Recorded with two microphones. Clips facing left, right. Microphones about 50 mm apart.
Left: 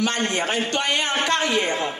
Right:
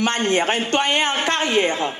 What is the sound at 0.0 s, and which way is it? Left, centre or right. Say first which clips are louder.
A man's voice: right 4 dB; right.